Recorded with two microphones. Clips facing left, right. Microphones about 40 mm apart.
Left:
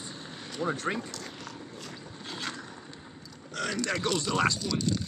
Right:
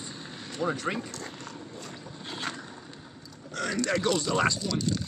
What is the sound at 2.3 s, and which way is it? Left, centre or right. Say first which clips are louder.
Vehicle: right 2 dB; centre.